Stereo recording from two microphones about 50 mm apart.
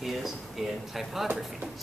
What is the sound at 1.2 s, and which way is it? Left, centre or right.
Speech, centre.